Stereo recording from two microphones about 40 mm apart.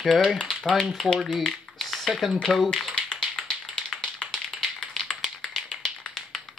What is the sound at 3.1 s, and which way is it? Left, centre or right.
Tap, centre.